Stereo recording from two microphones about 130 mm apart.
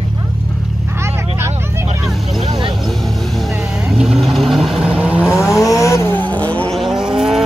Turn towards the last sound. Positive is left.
turn(degrees=-5)  # may be behind; listen again after turning